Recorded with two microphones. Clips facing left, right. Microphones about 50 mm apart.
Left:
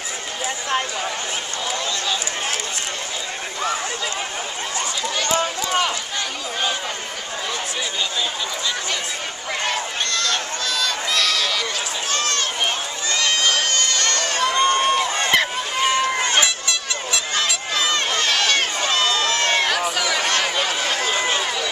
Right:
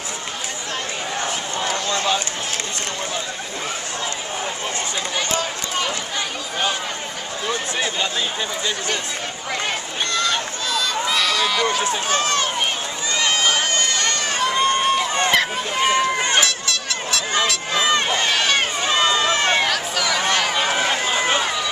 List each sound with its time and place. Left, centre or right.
9.7 s a sound: centre
12.1 s speech: centre
13.1 s run: centre
15.3 s a sound: centre
15.9 s run: centre
16.3 s honk: centre
17.7 s run: centre
19.7 s a sound: centre
20.2 s run: centre
21.1 s run: centre